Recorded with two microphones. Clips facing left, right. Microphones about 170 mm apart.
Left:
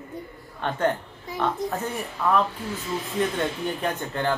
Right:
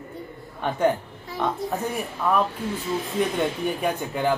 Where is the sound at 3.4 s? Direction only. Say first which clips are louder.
Right 2 dB; 10° right (ahead or behind).